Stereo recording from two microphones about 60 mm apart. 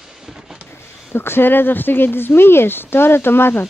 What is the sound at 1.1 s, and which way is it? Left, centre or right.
Speech, left.